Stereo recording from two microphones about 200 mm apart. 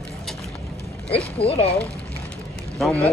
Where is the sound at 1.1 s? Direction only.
30° left (ahead or behind).